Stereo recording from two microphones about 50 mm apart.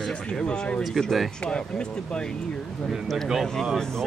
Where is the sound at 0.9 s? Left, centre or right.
Centre.